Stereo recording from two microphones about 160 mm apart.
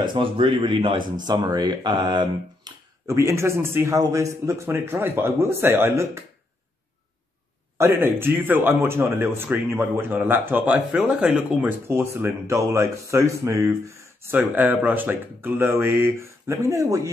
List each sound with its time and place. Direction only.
0.0 s speech: 30° right (ahead or behind)
3.2 s speech: 15° right (ahead or behind)
7.7 s speech: 15° right (ahead or behind)
11.9 s speech: 15° right (ahead or behind)